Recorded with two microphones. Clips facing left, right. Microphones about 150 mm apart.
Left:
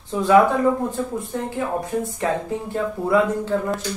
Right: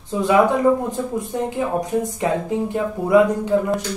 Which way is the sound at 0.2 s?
20° right (ahead or behind).